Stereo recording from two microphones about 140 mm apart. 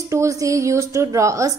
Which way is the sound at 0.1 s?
20° right (ahead or behind).